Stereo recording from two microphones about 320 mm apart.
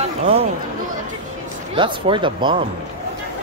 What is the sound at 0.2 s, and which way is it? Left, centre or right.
Speech, centre.